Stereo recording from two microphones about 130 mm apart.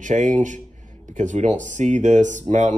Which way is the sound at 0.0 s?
75° right (ahead or behind).